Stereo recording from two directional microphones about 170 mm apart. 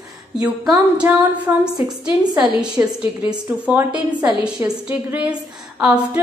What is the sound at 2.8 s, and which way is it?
A woman's voice, 15° right (ahead or behind).